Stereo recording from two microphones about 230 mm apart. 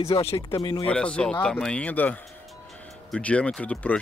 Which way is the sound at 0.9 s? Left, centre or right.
Centre.